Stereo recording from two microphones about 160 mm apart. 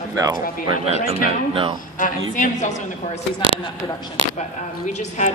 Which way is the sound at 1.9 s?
55° left (ahead or behind).